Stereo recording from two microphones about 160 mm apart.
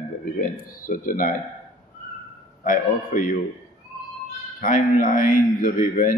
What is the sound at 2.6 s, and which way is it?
Speech, 60° left (ahead or behind).